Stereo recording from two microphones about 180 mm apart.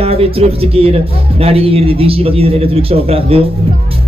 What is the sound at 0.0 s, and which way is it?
A man's voice, 30° right (ahead or behind).